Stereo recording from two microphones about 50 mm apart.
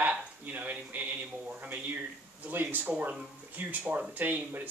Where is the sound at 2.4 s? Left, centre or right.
Right.